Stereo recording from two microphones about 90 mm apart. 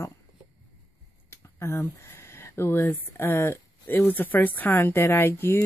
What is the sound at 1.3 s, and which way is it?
Speech, 30° left (ahead or behind).